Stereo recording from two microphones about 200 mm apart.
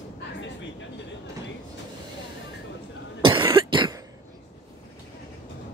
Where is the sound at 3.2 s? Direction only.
25° right (ahead or behind).